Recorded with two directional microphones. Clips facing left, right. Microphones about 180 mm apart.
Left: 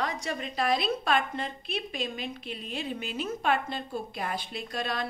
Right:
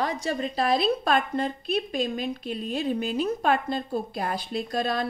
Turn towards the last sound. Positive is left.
turn(degrees=-40)  # may be behind; listen again after turning